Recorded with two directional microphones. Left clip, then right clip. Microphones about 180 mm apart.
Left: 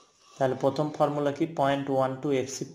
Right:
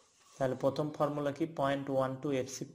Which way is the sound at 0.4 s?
15° right (ahead or behind).